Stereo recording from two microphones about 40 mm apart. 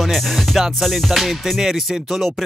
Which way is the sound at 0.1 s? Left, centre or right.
Centre.